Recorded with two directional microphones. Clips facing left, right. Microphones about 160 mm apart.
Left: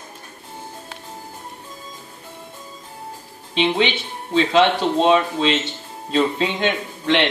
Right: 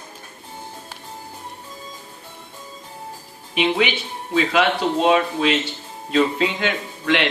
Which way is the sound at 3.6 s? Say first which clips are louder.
Left 1 dB; 25° left (ahead or behind).